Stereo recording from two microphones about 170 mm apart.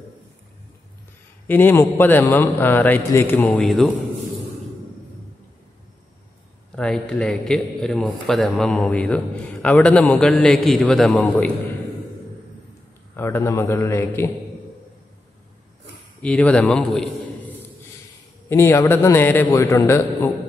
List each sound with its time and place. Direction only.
1.5 s a man's voice: 10° left (ahead or behind)
6.7 s a man's voice: 5° left (ahead or behind)
13.1 s a man's voice: 15° left (ahead or behind)
16.2 s a man's voice: 10° left (ahead or behind)
18.5 s a man's voice: 15° left (ahead or behind)